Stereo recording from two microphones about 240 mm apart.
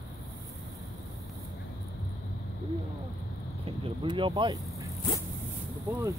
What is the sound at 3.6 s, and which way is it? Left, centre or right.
Speech, right.